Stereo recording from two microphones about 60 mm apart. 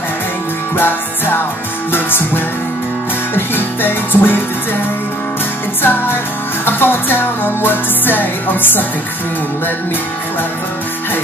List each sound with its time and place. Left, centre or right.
0.7 s music: left
5.8 s music: left